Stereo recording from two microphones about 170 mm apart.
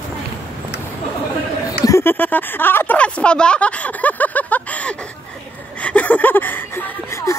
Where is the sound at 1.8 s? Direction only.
15° left (ahead or behind).